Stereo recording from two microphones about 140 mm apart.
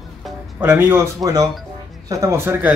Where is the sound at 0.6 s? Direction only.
15° right (ahead or behind).